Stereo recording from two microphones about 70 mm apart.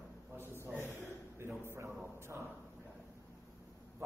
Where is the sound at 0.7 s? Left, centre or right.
Right.